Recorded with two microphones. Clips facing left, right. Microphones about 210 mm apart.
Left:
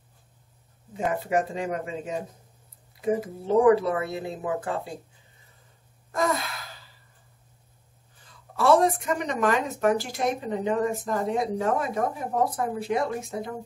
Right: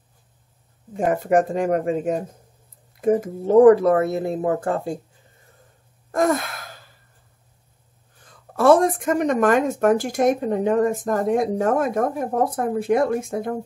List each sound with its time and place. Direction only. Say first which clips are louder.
0.9 s speech: right 7 dB; 50° right (ahead or behind)
6.1 s sigh: right 6 dB; 50° right (ahead or behind)
8.2 s a woman's voice: right 6 dB; 50° right (ahead or behind)